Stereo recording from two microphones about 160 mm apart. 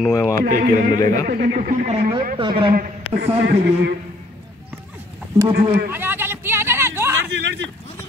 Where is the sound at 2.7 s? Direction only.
65° right (ahead or behind).